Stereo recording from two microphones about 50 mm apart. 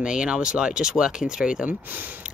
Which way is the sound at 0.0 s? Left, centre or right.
Centre.